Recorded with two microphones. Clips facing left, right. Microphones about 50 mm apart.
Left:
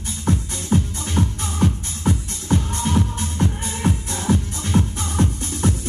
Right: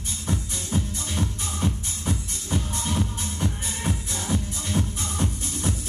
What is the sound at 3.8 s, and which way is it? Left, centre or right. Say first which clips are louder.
Music: left 7 dB; left.